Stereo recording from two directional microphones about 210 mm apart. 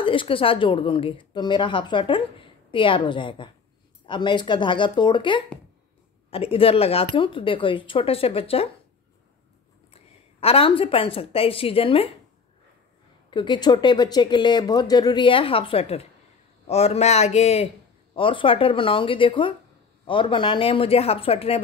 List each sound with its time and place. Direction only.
0.0 s a woman's voice: 25° left (ahead or behind)
9.9 s a woman's voice: 25° left (ahead or behind)
13.3 s a woman's voice: 20° left (ahead or behind)